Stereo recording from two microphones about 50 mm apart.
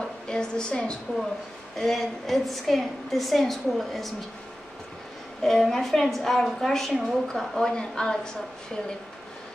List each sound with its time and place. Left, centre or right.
0.3 s a woman's voice: centre
1.8 s a woman's voice: centre
5.4 s a woman's voice: centre
7.5 s a woman's voice: centre